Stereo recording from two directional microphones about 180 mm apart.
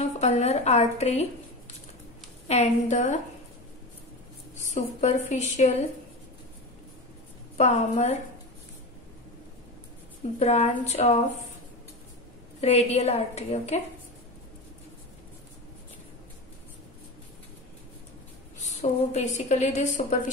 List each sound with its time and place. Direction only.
0.2 s a woman's voice: 35° left (ahead or behind)
2.4 s a woman's voice: 40° left (ahead or behind)
4.6 s a woman's voice: 40° left (ahead or behind)
7.5 s a woman's voice: 40° left (ahead or behind)
10.4 s a woman's voice: 40° left (ahead or behind)
12.5 s a woman's voice: 35° left (ahead or behind)
18.8 s a woman's voice: 40° left (ahead or behind)